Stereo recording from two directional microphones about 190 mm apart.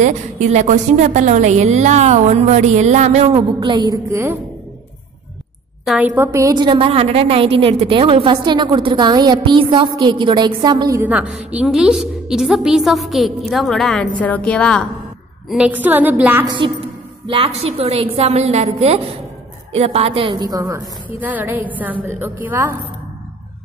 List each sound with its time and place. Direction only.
0.0 s a woman's voice: 40° right (ahead or behind); by 4.4 s 15° right (ahead or behind)
5.9 s a woman's voice: 10° right (ahead or behind)
15.5 s a woman's voice: 5° right (ahead or behind)
16.4 s a woman's voice: 25° right (ahead or behind); by 22.8 s 10° right (ahead or behind)